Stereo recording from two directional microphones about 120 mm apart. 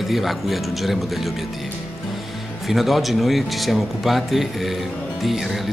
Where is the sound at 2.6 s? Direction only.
Centre (ahead or behind).